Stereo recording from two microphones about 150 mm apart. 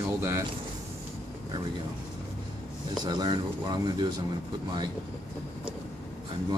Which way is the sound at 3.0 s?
30° right (ahead or behind).